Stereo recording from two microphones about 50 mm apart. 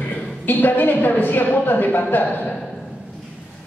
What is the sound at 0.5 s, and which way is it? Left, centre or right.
Speech, left.